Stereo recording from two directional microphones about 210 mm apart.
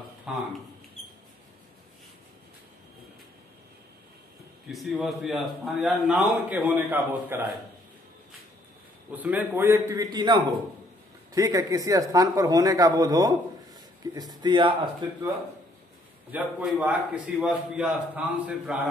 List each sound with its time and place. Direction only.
0.3 s a man's voice: 5° right (ahead or behind)
4.6 s a man's voice: centre (ahead or behind)
9.1 s a man's voice: 10° right (ahead or behind)
16.3 s a man's voice: 5° right (ahead or behind)